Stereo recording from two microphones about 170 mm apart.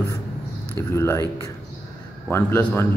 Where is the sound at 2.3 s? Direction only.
15° left (ahead or behind).